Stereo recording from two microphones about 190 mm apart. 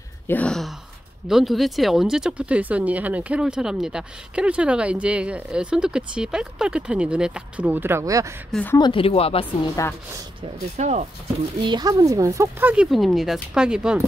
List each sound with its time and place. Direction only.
0.3 s speech: 5° left (ahead or behind); by 8.4 s 15° right (ahead or behind)
8.5 s speech: 5° left (ahead or behind)
8.7 s speech: 25° left (ahead or behind)
9.8 s a woman's voice: 15° left (ahead or behind)
10.4 s speech: 35° right (ahead or behind)
11.6 s speech: 20° right (ahead or behind); by 14.0 s 5° right (ahead or behind)